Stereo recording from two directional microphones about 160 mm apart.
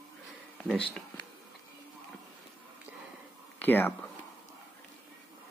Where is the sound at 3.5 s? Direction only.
10° left (ahead or behind).